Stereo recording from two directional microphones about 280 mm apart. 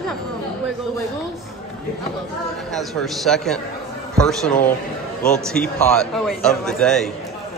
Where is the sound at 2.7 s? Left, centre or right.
Centre.